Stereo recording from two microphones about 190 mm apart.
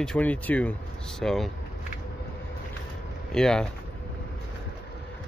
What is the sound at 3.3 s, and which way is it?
Speech, 5° left (ahead or behind).